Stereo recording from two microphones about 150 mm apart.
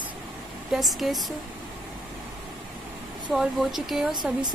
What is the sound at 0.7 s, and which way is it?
Speech, centre (ahead or behind).